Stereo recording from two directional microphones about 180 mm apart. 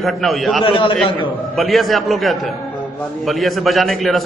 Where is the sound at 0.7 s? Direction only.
25° left (ahead or behind).